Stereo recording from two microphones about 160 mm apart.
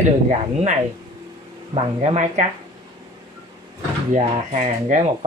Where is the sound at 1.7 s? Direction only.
40° right (ahead or behind).